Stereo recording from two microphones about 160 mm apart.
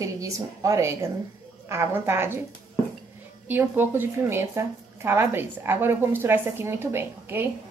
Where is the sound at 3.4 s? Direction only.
10° right (ahead or behind).